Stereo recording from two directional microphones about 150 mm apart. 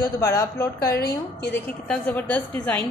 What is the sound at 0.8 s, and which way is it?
Speech, 90° left.